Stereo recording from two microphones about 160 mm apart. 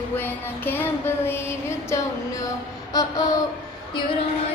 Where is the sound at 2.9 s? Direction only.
20° left (ahead or behind).